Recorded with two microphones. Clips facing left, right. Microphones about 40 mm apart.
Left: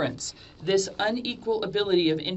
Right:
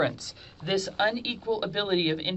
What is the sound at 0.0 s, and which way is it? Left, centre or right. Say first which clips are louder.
Speech: right 2 dB; centre.